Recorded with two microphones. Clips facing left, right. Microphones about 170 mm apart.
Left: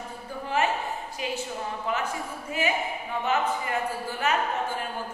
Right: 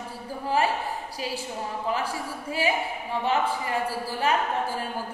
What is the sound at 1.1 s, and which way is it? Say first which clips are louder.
A woman's voice: even; 35° right (ahead or behind).